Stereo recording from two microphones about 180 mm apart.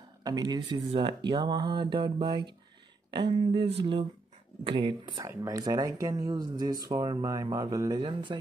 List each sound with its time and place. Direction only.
0.2 s speech: 20° right (ahead or behind)